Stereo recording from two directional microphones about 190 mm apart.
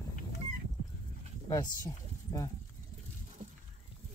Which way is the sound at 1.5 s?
20° left (ahead or behind).